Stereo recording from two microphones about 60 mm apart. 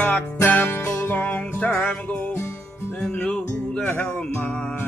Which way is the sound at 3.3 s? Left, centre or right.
Centre.